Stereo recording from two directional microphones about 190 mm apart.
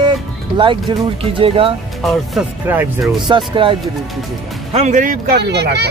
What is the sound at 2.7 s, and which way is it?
Speech, 10° right (ahead or behind).